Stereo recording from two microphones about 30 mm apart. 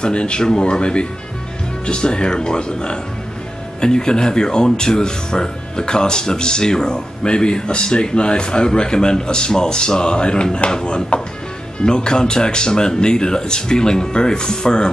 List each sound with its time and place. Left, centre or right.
0.0 s speech: left